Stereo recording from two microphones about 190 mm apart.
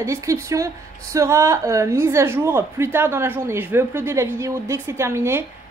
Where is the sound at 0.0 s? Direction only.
15° right (ahead or behind).